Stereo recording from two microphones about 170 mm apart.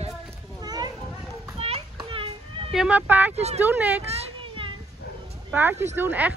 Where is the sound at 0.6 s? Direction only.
25° right (ahead or behind).